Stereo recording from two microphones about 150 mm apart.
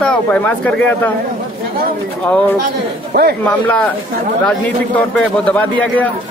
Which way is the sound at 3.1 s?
90° right.